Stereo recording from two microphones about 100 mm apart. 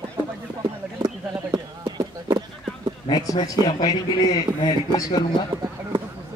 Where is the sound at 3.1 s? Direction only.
40° left (ahead or behind).